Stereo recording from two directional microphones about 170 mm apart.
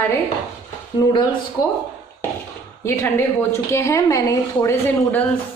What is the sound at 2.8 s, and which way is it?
A woman's voice, 15° left (ahead or behind).